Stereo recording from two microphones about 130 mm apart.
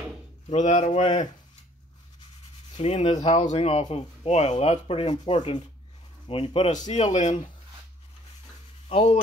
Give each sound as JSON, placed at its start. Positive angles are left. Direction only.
{"t": 0.5, "sound": "speech", "side_deg": 60}
{"t": 2.7, "sound": "speech", "side_deg": 50}
{"t": 8.8, "sound": "speech", "side_deg": 60}